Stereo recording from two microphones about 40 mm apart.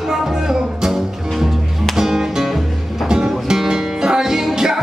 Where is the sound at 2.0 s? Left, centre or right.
Centre.